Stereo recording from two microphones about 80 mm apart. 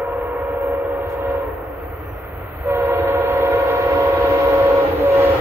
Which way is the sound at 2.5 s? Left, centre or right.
Right.